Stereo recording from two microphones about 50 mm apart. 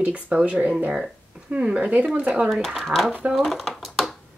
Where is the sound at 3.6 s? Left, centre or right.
Centre.